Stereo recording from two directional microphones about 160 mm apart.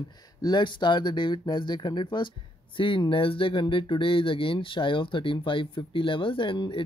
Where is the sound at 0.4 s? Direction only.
25° left (ahead or behind).